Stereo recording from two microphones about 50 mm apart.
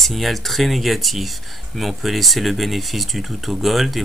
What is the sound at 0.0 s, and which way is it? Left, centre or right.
Speech, centre.